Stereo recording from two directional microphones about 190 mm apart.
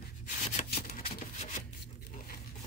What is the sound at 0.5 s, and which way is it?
Shuffling cards, 40° left (ahead or behind).